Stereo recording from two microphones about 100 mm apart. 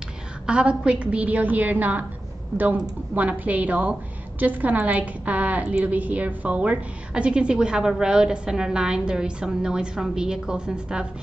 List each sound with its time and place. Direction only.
0.5 s a woman's voice: 10° right (ahead or behind)